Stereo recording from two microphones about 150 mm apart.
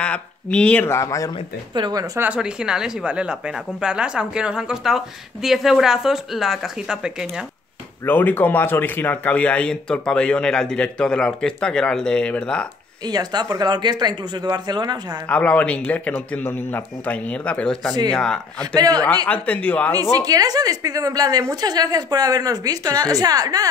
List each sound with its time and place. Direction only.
0.0 s speech: 5° left (ahead or behind)
1.7 s a woman's voice: 30° right (ahead or behind)
2.1 s speech: 10° right (ahead or behind)
8.0 s speech: 10° left (ahead or behind)
13.0 s a woman's voice: 25° right (ahead or behind)
15.2 s speech: 10° left (ahead or behind)
18.8 s a woman's voice: 25° right (ahead or behind)
19.2 s speech: 10° left (ahead or behind)
20.0 s a woman's voice: 25° right (ahead or behind)